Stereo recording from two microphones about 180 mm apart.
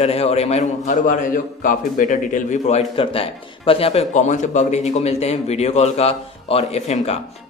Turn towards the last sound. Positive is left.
turn(degrees=40)  # may be behind; listen again after turning